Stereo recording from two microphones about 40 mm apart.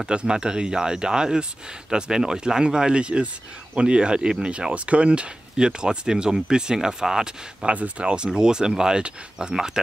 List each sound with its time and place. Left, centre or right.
0.0 s speech: right
7.6 s speech: right